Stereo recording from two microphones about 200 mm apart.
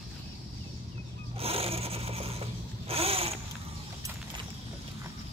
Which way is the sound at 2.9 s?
30° right (ahead or behind).